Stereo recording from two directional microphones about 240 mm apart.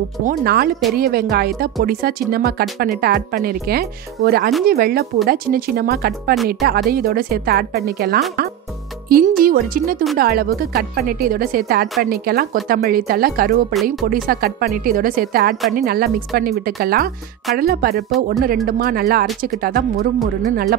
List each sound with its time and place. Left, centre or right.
0.2 s speech: right
6.3 s speech: centre
6.6 s speech: right